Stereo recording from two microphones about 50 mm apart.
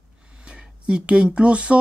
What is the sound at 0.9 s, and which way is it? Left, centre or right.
Speech, centre.